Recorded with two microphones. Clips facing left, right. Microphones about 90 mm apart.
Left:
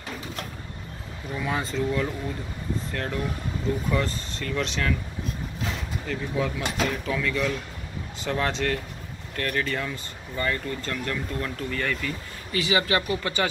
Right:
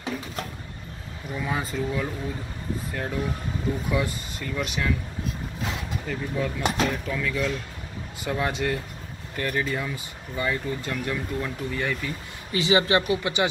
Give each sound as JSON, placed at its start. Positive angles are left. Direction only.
{"t": 1.3, "sound": "speech", "side_deg": -5}
{"t": 6.0, "sound": "speech", "side_deg": 0}
{"t": 12.5, "sound": "speech", "side_deg": -25}